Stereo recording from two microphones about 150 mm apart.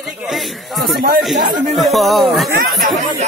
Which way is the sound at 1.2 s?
Centre (ahead or behind).